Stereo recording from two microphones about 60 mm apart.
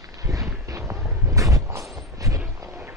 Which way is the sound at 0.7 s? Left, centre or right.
Right.